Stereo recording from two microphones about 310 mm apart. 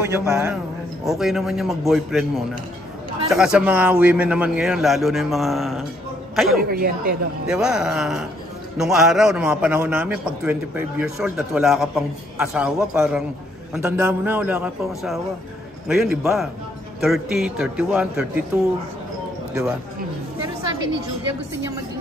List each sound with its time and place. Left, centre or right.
0.0 s a man's voice: centre
6.6 s a woman's voice: right
7.4 s a man's voice: centre